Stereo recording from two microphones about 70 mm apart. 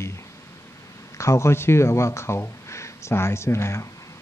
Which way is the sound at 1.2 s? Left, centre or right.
Left.